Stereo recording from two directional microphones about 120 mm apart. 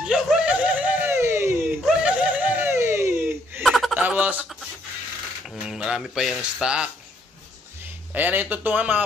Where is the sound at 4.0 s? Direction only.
15° right (ahead or behind).